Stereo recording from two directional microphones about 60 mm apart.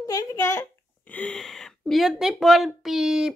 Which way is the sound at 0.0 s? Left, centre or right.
Left.